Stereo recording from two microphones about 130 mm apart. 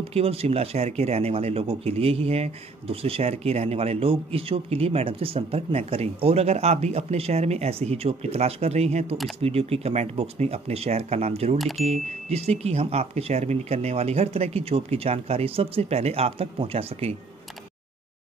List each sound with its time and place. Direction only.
0.1 s speech: 50° right (ahead or behind)
11.5 s speech: centre (ahead or behind)
11.8 s speech: 55° right (ahead or behind)